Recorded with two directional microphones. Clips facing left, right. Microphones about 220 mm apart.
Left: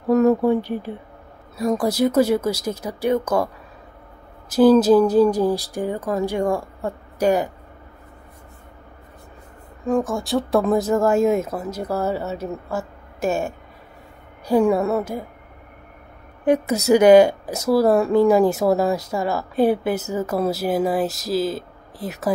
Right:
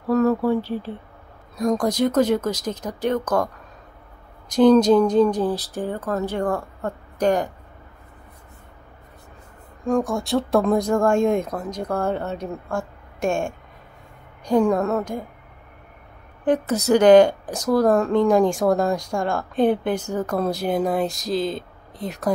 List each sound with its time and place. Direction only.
0.1 s a woman's voice: 20° left (ahead or behind)
4.5 s a woman's voice: 5° left (ahead or behind)
9.8 s a woman's voice: centre (ahead or behind)
16.4 s a woman's voice: 10° left (ahead or behind)